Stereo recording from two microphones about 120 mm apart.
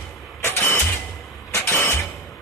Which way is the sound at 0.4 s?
20° left (ahead or behind).